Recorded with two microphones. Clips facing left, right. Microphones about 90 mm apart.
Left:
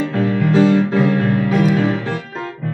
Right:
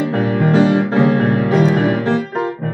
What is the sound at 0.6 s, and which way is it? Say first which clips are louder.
Music: left 1 dB; 20° right (ahead or behind).